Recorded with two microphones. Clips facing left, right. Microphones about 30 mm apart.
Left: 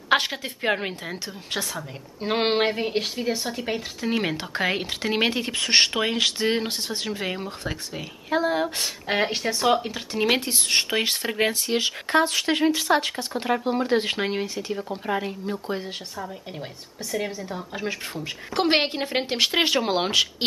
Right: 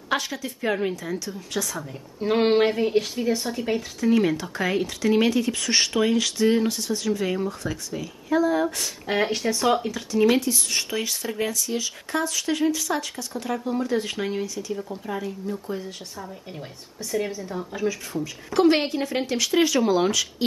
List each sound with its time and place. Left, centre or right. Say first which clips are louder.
0.1 s speech: left 4 dB; left
4.1 s speech: right 5 dB; left; by 9.8 s centre
9.8 s speech: right 4 dB; left
10.3 s speech: left 1 dB; left
17.1 s a woman's voice: right 1 dB; centre
17.8 s speech: right 4 dB; left